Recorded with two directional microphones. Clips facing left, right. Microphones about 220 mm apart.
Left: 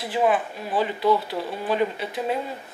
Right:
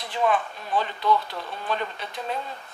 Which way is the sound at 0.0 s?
5° left (ahead or behind).